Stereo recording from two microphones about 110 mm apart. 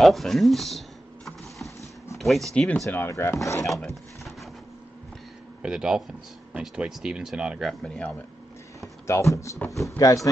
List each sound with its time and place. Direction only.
0.0 s typing: centre (ahead or behind)
2.1 s speech: centre (ahead or behind)
3.1 s speech: 25° left (ahead or behind)
3.8 s a sound: centre (ahead or behind)
5.6 s speech: 5° right (ahead or behind)
7.8 s speech: 5° left (ahead or behind)
9.0 s speech: 25° left (ahead or behind)